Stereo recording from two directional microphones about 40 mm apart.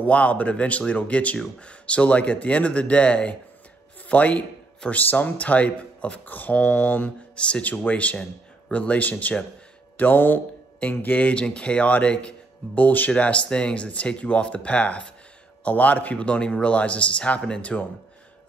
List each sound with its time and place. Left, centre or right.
0.0 s speech: left
6.2 s speech: left
6.5 s speech: left
9.9 s speech: left
12.7 s speech: left
13.1 s speech: left
15.6 s speech: left
16.3 s speech: left